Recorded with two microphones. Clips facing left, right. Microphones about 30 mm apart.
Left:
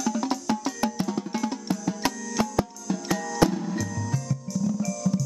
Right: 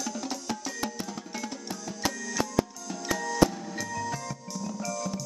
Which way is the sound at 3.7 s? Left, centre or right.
Centre.